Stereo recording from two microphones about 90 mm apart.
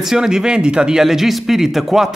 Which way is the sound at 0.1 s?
5° right (ahead or behind).